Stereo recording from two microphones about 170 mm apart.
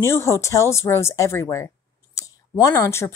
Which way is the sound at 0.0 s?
15° left (ahead or behind).